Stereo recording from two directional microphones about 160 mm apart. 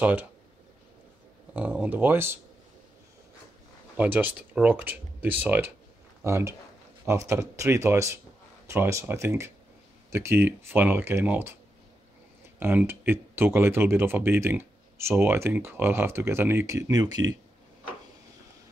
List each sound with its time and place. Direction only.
0.0 s speech: 10° right (ahead or behind)
1.5 s speech: 10° right (ahead or behind)
3.9 s speech: 10° right (ahead or behind)
12.5 s speech: 15° right (ahead or behind)